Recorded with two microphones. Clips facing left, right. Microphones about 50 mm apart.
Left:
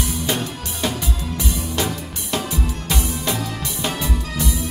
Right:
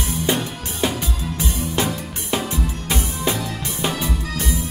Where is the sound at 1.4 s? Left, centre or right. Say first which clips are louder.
Right 2 dB; right.